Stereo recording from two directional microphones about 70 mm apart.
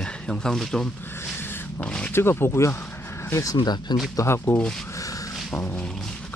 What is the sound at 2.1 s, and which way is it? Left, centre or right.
Speech, left.